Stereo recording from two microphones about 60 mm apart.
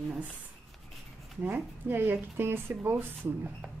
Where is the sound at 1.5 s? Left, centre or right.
Right.